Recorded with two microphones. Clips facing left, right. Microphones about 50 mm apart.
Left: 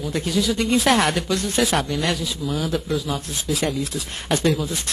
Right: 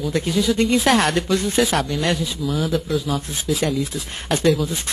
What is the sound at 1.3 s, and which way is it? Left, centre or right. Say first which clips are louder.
Speech: right 4 dB; centre.